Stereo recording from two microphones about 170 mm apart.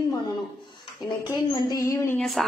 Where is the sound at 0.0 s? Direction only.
25° left (ahead or behind).